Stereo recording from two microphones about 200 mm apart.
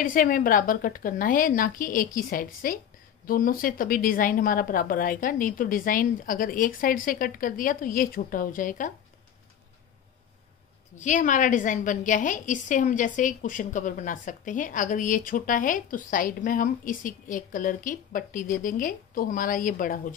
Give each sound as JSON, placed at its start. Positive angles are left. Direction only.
{"t": 0.0, "sound": "a woman's voice", "side_deg": 45}
{"t": 11.0, "sound": "a woman's voice", "side_deg": 40}